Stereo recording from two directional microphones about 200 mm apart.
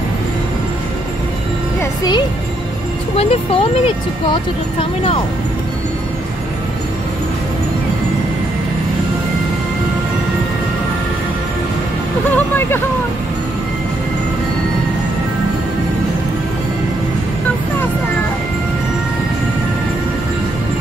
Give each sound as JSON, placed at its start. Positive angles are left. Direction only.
{"t": 1.8, "sound": "music", "side_deg": 20}
{"t": 3.2, "sound": "speech", "side_deg": 30}
{"t": 12.4, "sound": "speech", "side_deg": 10}